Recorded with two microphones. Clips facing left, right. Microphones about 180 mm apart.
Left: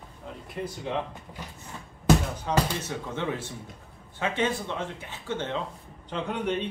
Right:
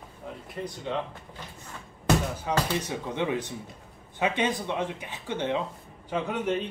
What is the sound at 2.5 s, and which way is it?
Speech, 15° right (ahead or behind).